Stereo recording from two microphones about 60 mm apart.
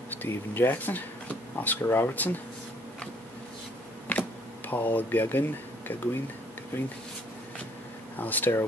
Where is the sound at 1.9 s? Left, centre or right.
Left.